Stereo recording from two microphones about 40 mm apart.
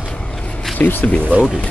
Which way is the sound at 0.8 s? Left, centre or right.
Left.